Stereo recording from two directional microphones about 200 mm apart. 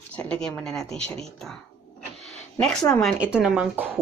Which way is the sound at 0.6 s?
5° left (ahead or behind).